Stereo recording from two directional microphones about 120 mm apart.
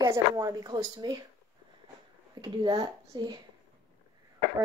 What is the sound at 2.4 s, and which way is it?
Speech, 35° right (ahead or behind).